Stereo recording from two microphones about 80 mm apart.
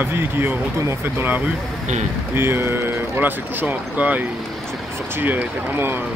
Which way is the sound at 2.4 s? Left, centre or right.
Right.